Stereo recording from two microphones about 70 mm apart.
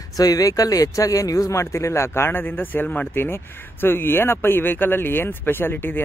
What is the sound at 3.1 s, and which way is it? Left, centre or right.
Speech, left.